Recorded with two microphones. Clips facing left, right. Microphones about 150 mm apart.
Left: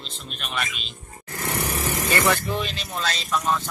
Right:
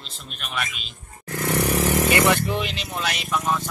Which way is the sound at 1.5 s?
75° right (ahead or behind).